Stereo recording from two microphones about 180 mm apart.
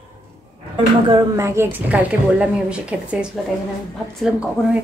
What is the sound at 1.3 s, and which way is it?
A woman's voice, 15° right (ahead or behind).